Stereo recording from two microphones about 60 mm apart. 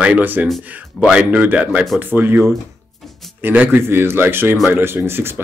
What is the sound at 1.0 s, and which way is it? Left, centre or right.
Speech, centre.